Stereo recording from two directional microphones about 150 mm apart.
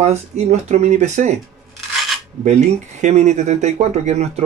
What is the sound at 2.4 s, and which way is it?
Speech, 50° right (ahead or behind).